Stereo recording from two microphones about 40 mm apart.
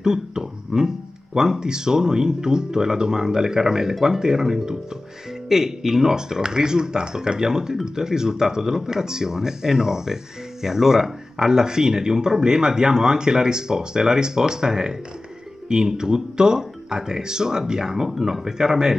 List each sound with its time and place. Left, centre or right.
0.0 s speech: centre